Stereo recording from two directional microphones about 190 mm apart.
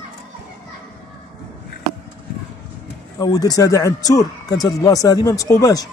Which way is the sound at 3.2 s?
20° left (ahead or behind).